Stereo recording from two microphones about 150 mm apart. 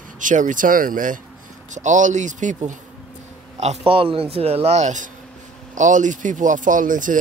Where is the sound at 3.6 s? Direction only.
45° right (ahead or behind).